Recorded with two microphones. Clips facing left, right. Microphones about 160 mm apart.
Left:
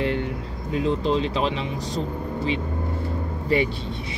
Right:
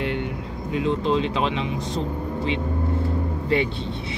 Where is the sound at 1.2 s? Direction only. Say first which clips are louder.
Right 1 dB; 35° left (ahead or behind).